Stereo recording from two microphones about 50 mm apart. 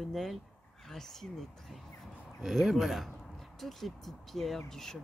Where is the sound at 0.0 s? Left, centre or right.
Centre.